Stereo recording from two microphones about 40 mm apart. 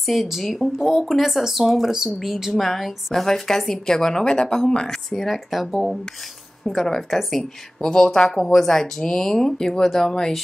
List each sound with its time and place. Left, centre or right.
0.0 s speech: centre
2.3 s a woman's voice: centre
4.8 s a woman's voice: centre
7.9 s a woman's voice: centre